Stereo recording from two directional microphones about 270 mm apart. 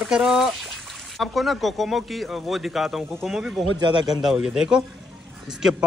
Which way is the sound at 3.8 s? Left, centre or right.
Centre.